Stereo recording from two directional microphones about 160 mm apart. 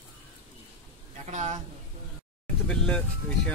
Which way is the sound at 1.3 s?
50° right (ahead or behind).